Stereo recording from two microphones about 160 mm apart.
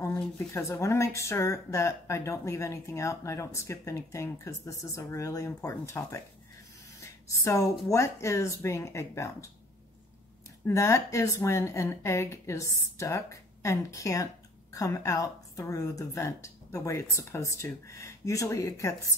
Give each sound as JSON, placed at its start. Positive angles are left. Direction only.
{"t": 0.0, "sound": "speech", "side_deg": 20}
{"t": 7.2, "sound": "a woman's voice", "side_deg": 20}
{"t": 10.7, "sound": "a woman's voice", "side_deg": 20}